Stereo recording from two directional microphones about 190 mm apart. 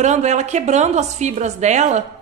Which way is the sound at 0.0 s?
35° right (ahead or behind).